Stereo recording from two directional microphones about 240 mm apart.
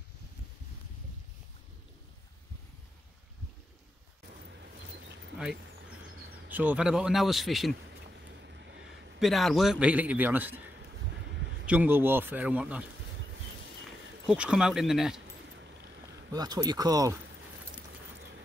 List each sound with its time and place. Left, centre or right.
6.5 s a man's voice: centre
8.3 s vehicle: right
9.2 s a man's voice: centre
11.6 s speech: centre
14.2 s a man's voice: centre
16.3 s speech: centre